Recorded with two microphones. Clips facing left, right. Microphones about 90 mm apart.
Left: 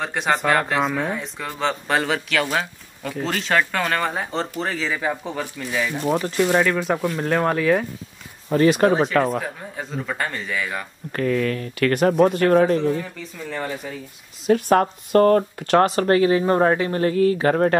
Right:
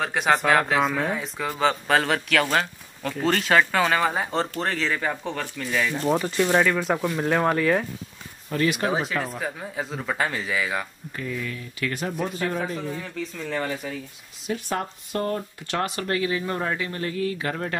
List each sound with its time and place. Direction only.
0.0 s speech: centre (ahead or behind)
8.5 s speech: 30° left (ahead or behind)
9.4 s speech: centre (ahead or behind)
11.1 s speech: 65° left (ahead or behind)
13.2 s speech: centre (ahead or behind)
14.5 s speech: 60° left (ahead or behind)
15.6 s speech: 45° left (ahead or behind)